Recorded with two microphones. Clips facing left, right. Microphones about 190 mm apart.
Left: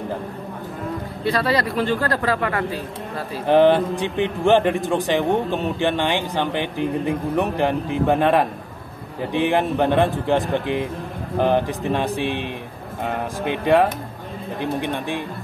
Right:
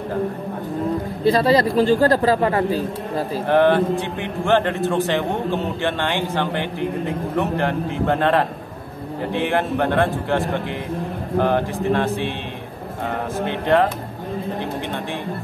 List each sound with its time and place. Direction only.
1.2 s a man's voice: 30° right (ahead or behind)
3.4 s a man's voice: 15° left (ahead or behind)
13.5 s a man's voice: 10° left (ahead or behind)